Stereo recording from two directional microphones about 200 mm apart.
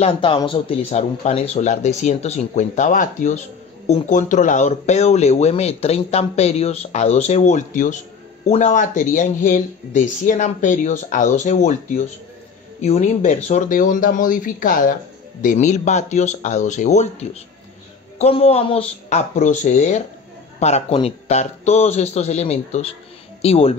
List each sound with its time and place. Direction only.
0.0 s speech: 25° left (ahead or behind)
12.8 s speech: 40° left (ahead or behind)